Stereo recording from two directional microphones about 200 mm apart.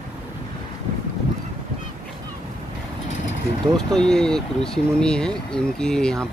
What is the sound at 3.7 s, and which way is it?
Speech, 5° left (ahead or behind).